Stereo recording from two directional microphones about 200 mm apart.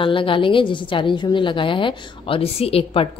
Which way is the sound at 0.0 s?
25° left (ahead or behind).